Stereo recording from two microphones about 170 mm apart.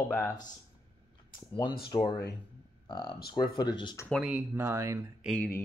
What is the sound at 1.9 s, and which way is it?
Speech, 45° left (ahead or behind).